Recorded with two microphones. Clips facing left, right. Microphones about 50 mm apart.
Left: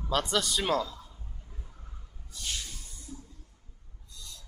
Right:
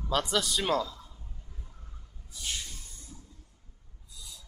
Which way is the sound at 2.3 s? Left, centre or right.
Centre.